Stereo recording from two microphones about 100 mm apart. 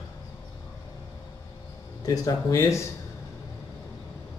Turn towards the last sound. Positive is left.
turn(degrees=30)  # may be behind; listen again after turning